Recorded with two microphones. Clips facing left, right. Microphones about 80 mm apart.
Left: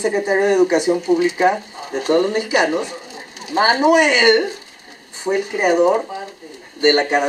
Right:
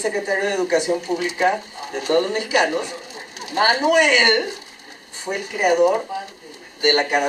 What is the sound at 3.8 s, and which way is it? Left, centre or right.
Speech, left.